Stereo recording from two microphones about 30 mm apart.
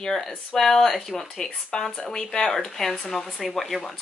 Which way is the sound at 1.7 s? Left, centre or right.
Left.